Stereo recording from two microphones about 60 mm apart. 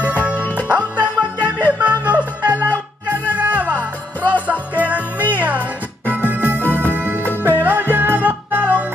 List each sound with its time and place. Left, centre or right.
0.3 s music: left
0.7 s music: right
6.2 s music: right